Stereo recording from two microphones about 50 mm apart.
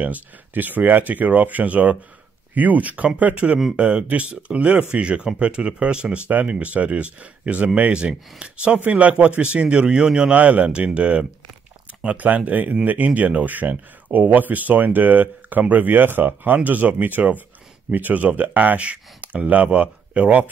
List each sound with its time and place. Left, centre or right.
0.0 s speech: right; by 10.3 s centre
10.3 s speech: right